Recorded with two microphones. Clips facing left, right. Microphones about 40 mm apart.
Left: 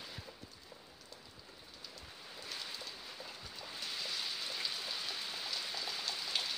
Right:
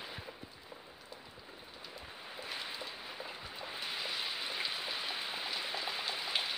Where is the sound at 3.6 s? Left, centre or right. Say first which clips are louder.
Right 3 dB; right.